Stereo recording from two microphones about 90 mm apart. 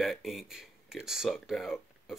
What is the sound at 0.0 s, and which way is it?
Speech, centre (ahead or behind).